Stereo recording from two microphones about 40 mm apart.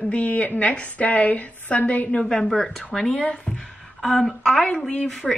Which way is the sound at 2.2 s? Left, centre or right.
Centre.